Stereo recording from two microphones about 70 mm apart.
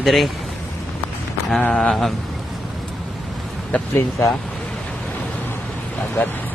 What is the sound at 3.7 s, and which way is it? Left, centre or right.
Speech, left.